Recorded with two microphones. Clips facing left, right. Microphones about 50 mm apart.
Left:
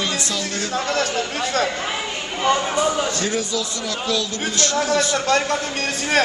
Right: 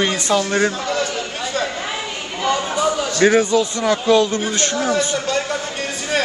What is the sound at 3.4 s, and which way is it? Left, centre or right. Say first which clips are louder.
Speech: right 8 dB; right.